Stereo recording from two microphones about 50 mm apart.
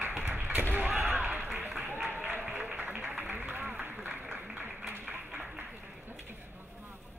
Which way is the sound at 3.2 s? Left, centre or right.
Right.